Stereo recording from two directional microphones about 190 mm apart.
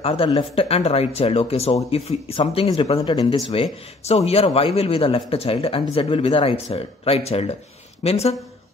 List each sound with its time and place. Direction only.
0.0 s speech: 30° left (ahead or behind)